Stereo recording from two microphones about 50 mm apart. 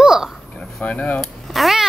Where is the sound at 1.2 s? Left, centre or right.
Centre.